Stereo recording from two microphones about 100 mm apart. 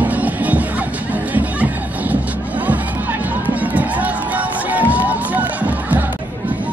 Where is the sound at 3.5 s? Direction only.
15° right (ahead or behind).